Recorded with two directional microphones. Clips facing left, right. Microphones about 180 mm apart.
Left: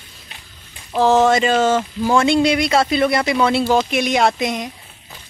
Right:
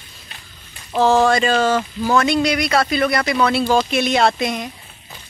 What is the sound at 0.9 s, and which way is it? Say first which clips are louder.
Speech: left 1 dB; 20° left (ahead or behind).